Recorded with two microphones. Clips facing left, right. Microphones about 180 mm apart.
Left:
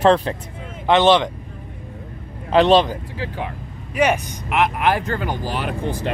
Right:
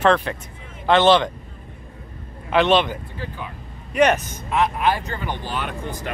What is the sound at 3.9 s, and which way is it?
Speech, 10° left (ahead or behind).